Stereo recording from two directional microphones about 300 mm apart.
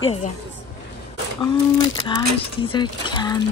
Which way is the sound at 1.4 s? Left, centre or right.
Centre.